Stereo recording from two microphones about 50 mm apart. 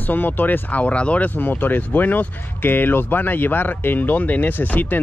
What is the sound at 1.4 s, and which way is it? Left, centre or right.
Speech, left.